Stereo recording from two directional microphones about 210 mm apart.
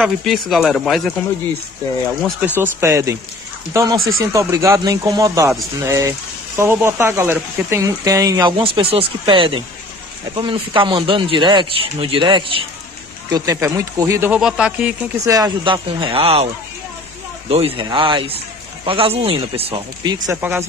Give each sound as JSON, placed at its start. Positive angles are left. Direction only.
{"t": 0.0, "sound": "speech", "side_deg": 0}
{"t": 2.6, "sound": "speech", "side_deg": -15}
{"t": 15.1, "sound": "speech", "side_deg": -15}
{"t": 17.5, "sound": "speech", "side_deg": -25}
{"t": 20.2, "sound": "speech", "side_deg": -10}